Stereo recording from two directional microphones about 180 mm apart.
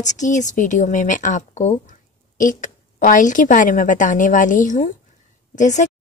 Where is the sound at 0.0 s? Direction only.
40° left (ahead or behind).